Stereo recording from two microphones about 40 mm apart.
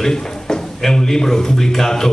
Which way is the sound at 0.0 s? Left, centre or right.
Centre.